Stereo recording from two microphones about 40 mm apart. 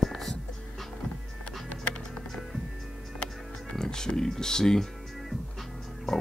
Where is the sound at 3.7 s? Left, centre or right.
Centre.